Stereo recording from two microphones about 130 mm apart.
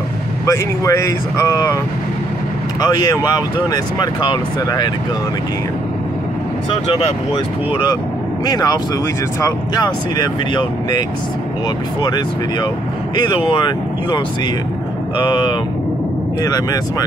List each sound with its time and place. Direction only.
0.5 s speech: 25° left (ahead or behind)
2.8 s speech: 30° left (ahead or behind)
7.7 s speech: 35° left (ahead or behind)
9.8 s speech: 35° left (ahead or behind)
13.1 s speech: 40° left (ahead or behind)
16.4 s speech: 30° left (ahead or behind)